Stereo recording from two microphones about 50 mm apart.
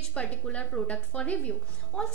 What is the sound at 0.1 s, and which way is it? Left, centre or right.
A woman's voice, left.